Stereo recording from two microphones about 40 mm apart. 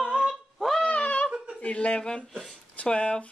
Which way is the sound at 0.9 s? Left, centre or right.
Left.